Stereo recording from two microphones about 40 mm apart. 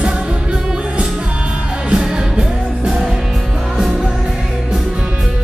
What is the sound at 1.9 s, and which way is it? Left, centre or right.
Music, right.